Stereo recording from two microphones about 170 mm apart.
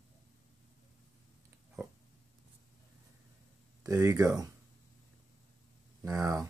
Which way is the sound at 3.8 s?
15° right (ahead or behind).